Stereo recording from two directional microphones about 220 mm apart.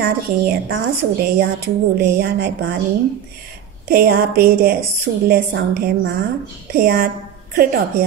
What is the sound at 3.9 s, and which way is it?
Speech, 45° right (ahead or behind).